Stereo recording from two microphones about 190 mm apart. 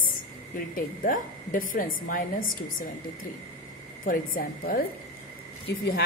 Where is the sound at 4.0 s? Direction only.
50° left (ahead or behind).